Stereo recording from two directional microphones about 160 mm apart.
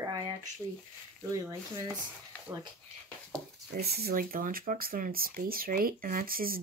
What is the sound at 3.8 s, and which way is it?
Speech, 80° right.